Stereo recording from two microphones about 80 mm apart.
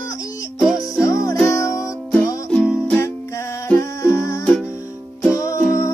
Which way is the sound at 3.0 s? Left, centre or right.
Left.